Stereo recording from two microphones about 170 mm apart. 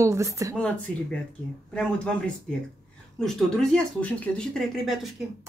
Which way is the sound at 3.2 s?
5° left (ahead or behind).